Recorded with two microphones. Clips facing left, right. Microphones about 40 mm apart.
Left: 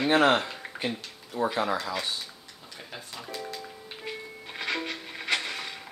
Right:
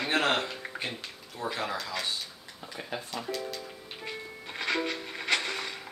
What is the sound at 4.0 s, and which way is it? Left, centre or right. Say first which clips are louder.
Music: left 1 dB; centre.